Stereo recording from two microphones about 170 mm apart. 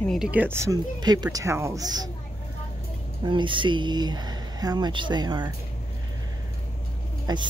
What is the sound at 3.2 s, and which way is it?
Speech, 30° right (ahead or behind).